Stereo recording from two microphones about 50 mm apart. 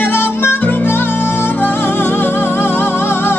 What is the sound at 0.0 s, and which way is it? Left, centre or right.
Music, left.